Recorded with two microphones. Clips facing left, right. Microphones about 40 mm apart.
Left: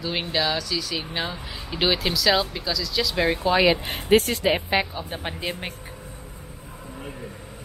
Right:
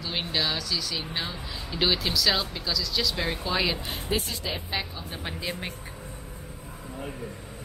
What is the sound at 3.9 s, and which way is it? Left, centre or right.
Speech, left.